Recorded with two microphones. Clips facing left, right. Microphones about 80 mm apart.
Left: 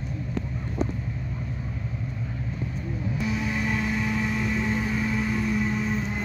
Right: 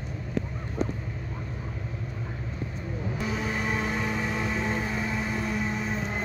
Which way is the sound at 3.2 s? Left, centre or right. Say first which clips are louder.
Left 2 dB; right.